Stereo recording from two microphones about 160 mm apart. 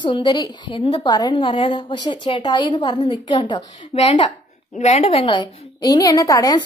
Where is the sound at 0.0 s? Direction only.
30° left (ahead or behind).